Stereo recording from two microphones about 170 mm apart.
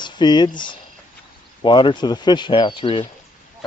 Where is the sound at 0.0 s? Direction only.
25° left (ahead or behind).